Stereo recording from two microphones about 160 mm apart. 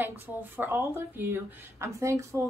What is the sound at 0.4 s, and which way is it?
Speech, 15° right (ahead or behind).